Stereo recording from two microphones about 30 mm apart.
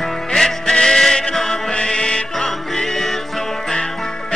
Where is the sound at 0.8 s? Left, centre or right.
Centre.